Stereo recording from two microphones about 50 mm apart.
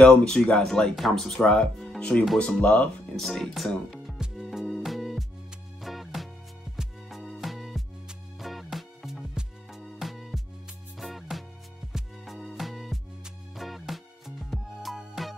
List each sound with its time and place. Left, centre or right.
0.0 s speech: left
0.9 s speech: centre
1.3 s speech: centre
3.2 s speech: centre
4.2 s music: centre